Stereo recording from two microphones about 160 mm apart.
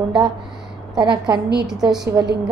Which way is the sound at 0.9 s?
25° right (ahead or behind).